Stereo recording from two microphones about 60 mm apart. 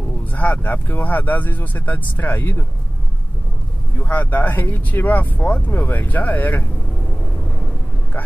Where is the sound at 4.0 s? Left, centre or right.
Left.